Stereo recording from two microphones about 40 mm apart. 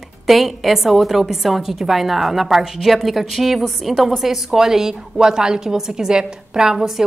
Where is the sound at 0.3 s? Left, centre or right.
Centre.